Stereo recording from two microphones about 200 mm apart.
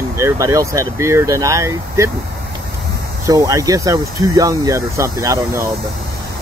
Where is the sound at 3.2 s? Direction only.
15° right (ahead or behind).